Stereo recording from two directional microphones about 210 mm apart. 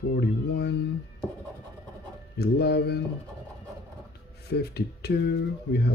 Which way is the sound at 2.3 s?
50° left (ahead or behind).